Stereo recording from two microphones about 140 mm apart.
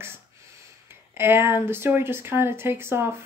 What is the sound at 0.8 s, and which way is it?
Speech, 15° right (ahead or behind).